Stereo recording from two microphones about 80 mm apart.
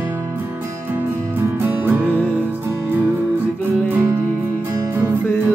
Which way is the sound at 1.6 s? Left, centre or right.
Right.